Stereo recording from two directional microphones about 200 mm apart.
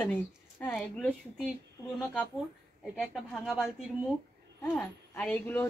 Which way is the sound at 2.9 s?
Centre (ahead or behind).